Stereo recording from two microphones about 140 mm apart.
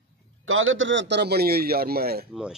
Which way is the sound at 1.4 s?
90° right.